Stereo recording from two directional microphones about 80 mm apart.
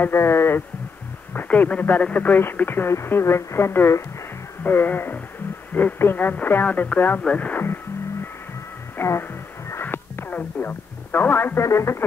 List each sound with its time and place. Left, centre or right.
0.0 s speech: left
8.9 s music: left
9.7 s radio: left
11.6 s speech: left